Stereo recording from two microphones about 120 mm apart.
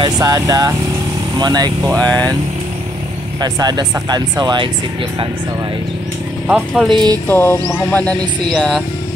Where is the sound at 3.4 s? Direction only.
35° right (ahead or behind).